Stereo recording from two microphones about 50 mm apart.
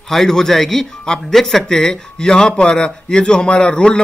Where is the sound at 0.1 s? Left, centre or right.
Centre.